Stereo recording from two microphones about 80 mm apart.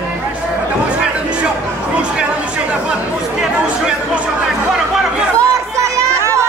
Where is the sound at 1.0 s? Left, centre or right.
Centre.